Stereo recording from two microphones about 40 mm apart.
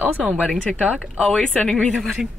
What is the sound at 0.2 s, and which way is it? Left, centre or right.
Speech, centre.